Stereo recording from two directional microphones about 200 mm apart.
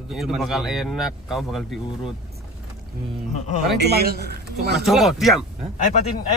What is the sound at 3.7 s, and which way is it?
Speech, 55° right (ahead or behind).